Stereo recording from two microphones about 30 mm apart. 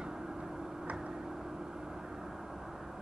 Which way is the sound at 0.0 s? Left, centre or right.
Centre.